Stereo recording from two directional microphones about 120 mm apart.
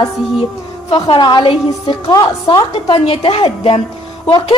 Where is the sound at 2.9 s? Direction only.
55° left (ahead or behind).